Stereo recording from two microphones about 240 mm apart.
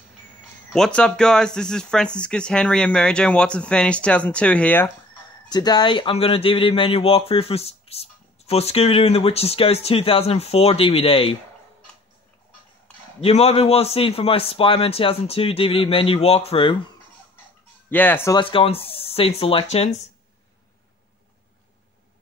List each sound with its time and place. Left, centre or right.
0.7 s speech: centre; by 11.3 s left
13.2 s speech: left
17.8 s speech: centre; by 20.1 s left